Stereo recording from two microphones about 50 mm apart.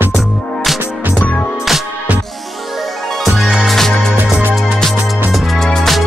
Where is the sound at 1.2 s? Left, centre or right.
Left.